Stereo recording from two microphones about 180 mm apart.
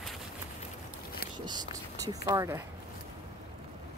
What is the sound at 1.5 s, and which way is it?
Speech, 20° right (ahead or behind).